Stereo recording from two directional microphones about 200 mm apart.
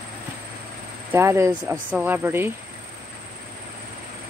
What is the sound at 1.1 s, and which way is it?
Speech, 15° right (ahead or behind).